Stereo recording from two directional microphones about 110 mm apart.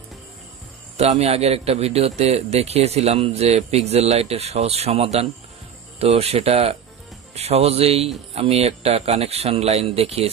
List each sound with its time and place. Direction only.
0.9 s a man's voice: 70° right (ahead or behind)